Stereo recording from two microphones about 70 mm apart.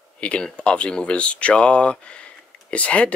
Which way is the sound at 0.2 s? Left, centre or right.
Centre.